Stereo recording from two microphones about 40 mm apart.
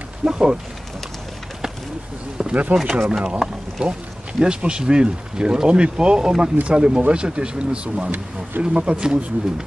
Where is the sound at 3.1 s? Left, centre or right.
Centre.